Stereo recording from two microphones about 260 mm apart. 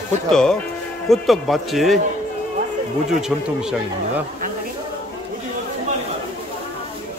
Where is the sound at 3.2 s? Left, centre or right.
Centre.